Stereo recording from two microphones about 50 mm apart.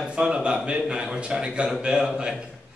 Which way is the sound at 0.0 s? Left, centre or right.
Centre.